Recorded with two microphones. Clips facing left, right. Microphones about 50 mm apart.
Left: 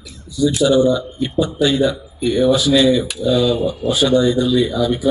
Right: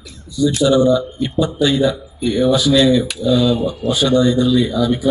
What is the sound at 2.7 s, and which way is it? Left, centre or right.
Speech, left.